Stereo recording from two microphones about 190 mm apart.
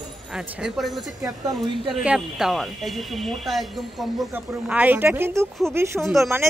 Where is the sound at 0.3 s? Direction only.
5° right (ahead or behind).